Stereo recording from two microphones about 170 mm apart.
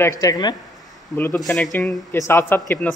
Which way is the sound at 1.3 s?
Centre (ahead or behind).